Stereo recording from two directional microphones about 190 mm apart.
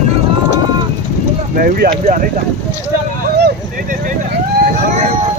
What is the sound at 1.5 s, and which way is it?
Speech, 45° right (ahead or behind).